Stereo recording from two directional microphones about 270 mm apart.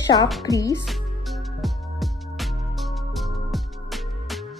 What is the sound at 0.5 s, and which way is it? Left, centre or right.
Speech, centre.